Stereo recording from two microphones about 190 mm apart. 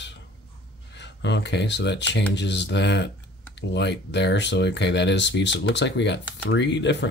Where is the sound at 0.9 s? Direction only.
65° left (ahead or behind).